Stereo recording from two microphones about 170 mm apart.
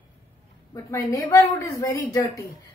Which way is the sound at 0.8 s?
15° left (ahead or behind).